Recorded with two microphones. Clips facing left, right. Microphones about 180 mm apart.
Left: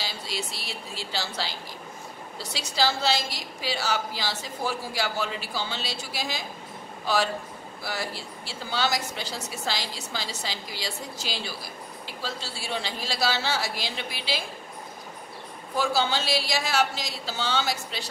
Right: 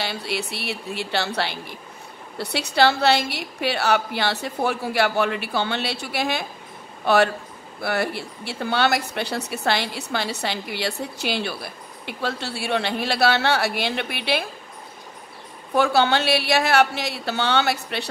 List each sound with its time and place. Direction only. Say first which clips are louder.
0.0 s a woman's voice: right 6 dB; 65° right (ahead or behind)
15.7 s a woman's voice: right 7 dB; 65° right (ahead or behind)